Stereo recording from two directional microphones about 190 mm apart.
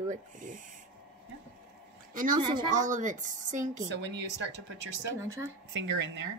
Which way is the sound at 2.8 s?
40° right (ahead or behind).